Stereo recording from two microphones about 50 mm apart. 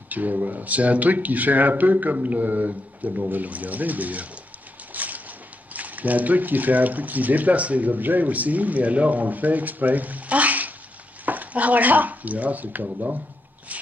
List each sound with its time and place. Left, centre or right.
0.1 s speech: right
4.9 s a sound: right
5.7 s speech: right